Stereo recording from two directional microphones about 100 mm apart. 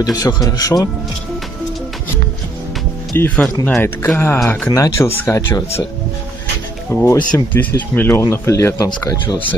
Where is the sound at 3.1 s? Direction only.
15° left (ahead or behind).